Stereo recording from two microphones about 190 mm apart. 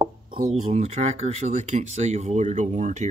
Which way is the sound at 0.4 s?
35° right (ahead or behind).